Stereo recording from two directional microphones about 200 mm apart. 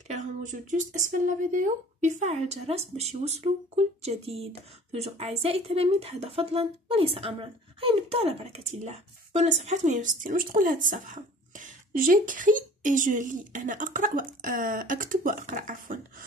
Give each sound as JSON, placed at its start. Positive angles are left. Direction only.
{"t": 0.1, "sound": "speech", "side_deg": -40}